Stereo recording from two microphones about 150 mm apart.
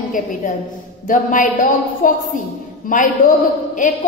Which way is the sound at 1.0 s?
60° left (ahead or behind).